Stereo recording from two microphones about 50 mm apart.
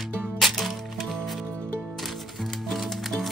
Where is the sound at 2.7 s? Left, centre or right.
Centre.